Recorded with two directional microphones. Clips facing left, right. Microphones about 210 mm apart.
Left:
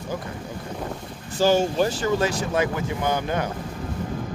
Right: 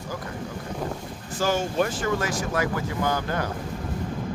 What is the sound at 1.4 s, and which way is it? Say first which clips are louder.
Speech: left 4 dB; 30° left (ahead or behind).